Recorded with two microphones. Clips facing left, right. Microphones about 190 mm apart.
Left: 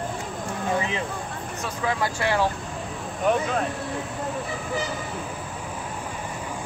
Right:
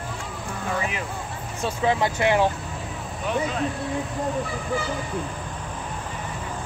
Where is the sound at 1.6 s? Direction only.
25° right (ahead or behind).